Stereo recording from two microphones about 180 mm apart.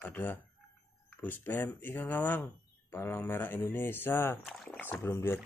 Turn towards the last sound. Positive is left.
turn(degrees=15)  # may be behind; listen again after turning